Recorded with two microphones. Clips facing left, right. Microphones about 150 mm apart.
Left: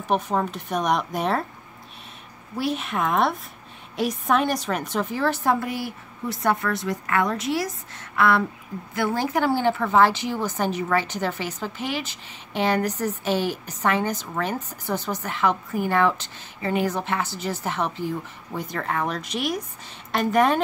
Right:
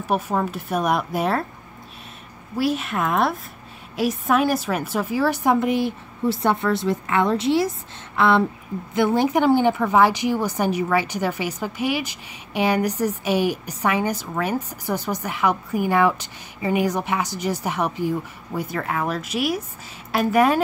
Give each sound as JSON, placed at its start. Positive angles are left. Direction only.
{"t": 0.1, "sound": "speech", "side_deg": -5}
{"t": 2.5, "sound": "a woman's voice", "side_deg": 0}